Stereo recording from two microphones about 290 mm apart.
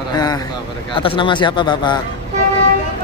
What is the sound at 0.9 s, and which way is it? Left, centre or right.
Speech, centre.